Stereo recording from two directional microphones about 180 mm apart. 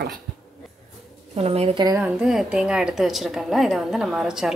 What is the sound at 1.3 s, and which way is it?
Speech, 35° right (ahead or behind).